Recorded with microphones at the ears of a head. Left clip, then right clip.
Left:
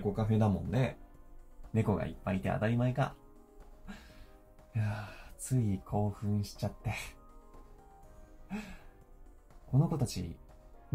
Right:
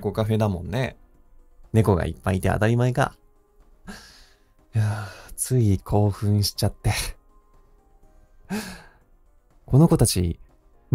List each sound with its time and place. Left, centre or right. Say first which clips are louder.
0.0 s speech: right 9 dB; right
3.8 s music: right 11 dB; right
4.7 s speech: right 9 dB; right
8.5 s sigh: right 13 dB; right
9.7 s speech: right 15 dB; right